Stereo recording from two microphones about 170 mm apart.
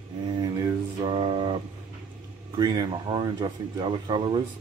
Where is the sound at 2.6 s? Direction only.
25° right (ahead or behind).